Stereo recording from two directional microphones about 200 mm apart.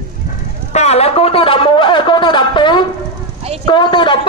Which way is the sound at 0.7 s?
35° left (ahead or behind).